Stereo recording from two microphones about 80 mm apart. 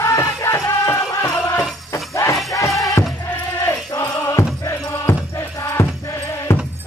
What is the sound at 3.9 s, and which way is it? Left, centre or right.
Music, left.